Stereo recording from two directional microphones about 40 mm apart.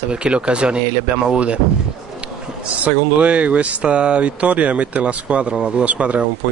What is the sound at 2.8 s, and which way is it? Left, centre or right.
A man's voice, right.